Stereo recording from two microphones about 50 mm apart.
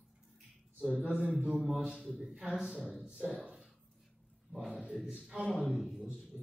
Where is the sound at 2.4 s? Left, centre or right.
Centre.